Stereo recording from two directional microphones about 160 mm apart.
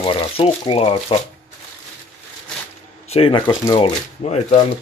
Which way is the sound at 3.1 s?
35° left (ahead or behind).